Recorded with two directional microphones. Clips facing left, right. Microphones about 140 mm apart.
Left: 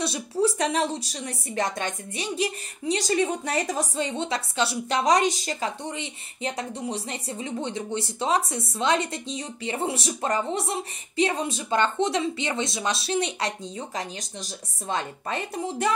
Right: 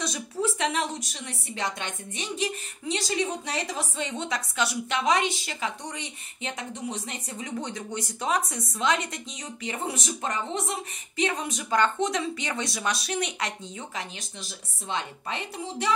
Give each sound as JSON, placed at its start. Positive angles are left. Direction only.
{"t": 0.0, "sound": "speech", "side_deg": 35}